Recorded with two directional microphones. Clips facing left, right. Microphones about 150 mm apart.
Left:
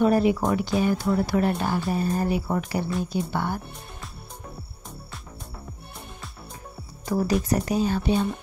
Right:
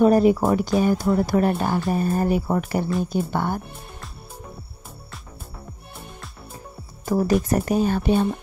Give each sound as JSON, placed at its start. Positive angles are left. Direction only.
{"t": 0.0, "sound": "speech", "side_deg": -40}
{"t": 7.1, "sound": "speech", "side_deg": -40}
{"t": 7.4, "sound": "speech", "side_deg": -50}